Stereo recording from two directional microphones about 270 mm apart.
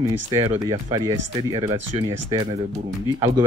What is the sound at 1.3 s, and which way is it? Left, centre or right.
Speech, centre.